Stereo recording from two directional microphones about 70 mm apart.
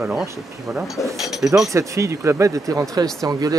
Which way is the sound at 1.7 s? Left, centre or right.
Right.